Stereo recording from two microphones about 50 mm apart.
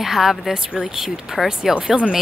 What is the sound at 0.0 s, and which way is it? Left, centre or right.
A woman's voice, centre.